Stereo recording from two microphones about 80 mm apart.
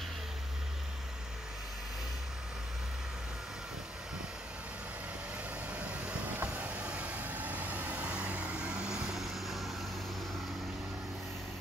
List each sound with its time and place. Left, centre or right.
5.7 s vehicle: centre